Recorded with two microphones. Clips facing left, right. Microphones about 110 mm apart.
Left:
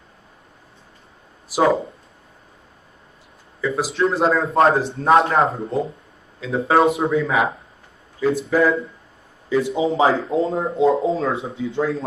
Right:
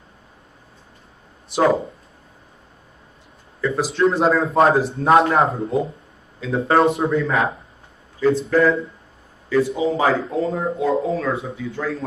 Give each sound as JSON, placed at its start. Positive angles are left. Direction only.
{"t": 1.5, "sound": "a man's voice", "side_deg": 0}
{"t": 3.6, "sound": "a man's voice", "side_deg": 0}
{"t": 9.5, "sound": "speech", "side_deg": 20}